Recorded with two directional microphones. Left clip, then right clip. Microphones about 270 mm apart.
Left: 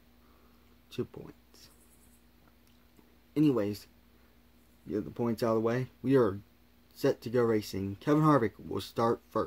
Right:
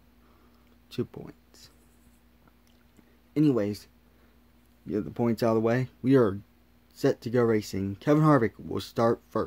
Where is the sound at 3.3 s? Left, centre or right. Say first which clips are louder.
Right 3 dB; centre.